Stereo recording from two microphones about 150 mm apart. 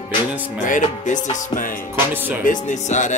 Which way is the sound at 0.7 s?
55° left (ahead or behind).